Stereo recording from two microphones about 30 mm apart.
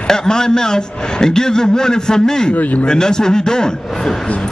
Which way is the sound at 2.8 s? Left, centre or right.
Left.